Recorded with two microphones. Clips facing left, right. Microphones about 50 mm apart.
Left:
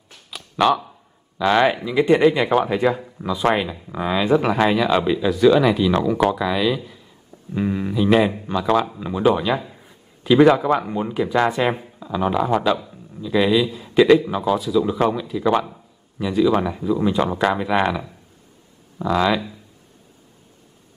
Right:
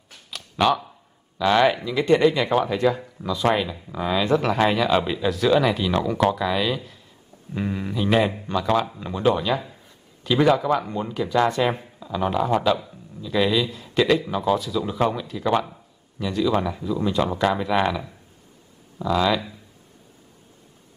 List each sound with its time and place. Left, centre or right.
0.1 s a sound: centre
1.4 s a man's voice: centre
17.3 s speech: centre
18.9 s speech: left